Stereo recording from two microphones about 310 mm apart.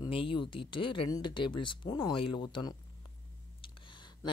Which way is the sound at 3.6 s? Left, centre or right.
Centre.